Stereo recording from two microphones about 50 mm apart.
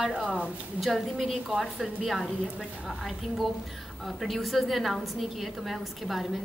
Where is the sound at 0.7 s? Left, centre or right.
Centre.